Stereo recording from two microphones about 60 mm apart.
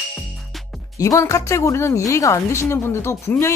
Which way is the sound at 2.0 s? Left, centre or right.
Left.